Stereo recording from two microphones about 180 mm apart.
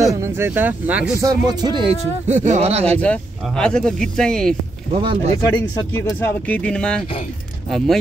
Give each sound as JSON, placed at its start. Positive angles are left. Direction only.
{"t": 0.0, "sound": "speech", "side_deg": -15}
{"t": 1.2, "sound": "speech", "side_deg": -20}
{"t": 2.2, "sound": "speech", "side_deg": -40}
{"t": 3.0, "sound": "speech", "side_deg": 5}
{"t": 4.9, "sound": "speech", "side_deg": -30}
{"t": 6.0, "sound": "speech", "side_deg": 10}